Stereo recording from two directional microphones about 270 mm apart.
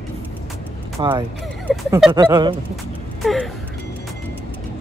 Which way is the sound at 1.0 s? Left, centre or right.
Centre.